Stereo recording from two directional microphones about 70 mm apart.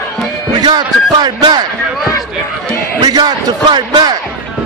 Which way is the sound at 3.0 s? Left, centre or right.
Right.